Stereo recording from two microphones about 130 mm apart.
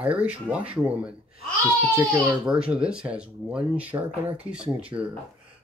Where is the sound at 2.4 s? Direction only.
5° right (ahead or behind).